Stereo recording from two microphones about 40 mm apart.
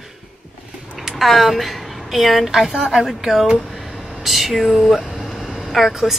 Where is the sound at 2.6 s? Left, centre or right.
Centre.